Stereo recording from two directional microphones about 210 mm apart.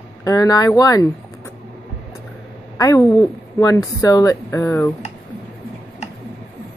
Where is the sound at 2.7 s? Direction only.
15° left (ahead or behind).